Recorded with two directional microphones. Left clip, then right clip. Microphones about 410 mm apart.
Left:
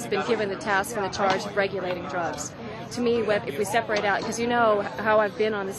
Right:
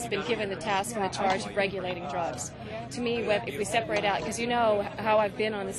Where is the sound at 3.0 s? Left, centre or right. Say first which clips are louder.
Left 5 dB; right.